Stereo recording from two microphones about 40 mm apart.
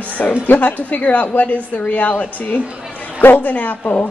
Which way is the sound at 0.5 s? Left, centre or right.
Left.